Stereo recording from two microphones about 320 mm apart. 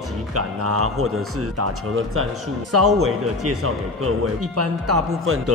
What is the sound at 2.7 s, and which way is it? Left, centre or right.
Speech, right.